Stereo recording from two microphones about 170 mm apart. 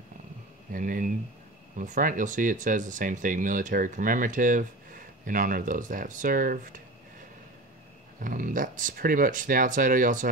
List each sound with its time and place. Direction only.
0.7 s speech: 50° right (ahead or behind)
8.2 s speech: 50° right (ahead or behind)